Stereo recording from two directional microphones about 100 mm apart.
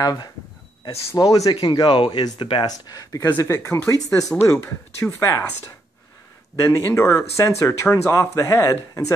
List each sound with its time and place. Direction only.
0.0 s speech: 40° left (ahead or behind)
1.6 s speech: 50° left (ahead or behind)
2.6 s speech: 35° left (ahead or behind)
3.2 s speech: 20° left (ahead or behind)
6.5 s speech: 30° left (ahead or behind)